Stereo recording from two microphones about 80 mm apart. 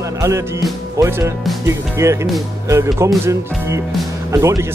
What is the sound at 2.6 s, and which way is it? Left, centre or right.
Speech, right.